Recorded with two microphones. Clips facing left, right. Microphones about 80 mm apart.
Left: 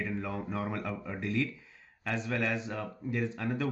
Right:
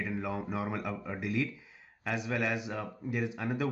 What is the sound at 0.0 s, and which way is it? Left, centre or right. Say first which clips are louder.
Speech: even; centre.